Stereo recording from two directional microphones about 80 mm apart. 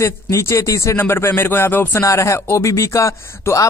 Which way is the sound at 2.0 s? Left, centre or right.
Left.